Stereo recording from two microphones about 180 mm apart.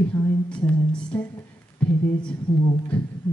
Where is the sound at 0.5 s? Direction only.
10° left (ahead or behind).